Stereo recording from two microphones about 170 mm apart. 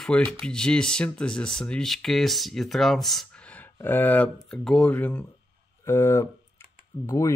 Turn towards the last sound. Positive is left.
turn(degrees=20)  # may be behind; listen again after turning